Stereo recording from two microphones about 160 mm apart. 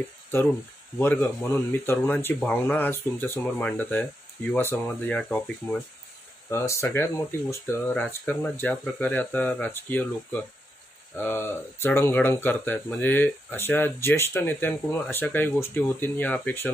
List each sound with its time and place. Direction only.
0.0 s speech: 15° left (ahead or behind)
6.5 s speech: 15° left (ahead or behind)